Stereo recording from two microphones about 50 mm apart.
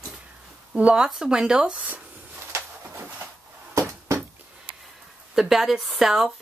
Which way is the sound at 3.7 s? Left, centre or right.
Right.